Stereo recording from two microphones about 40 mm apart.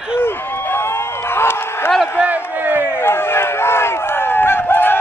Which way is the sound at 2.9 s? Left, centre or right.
Left.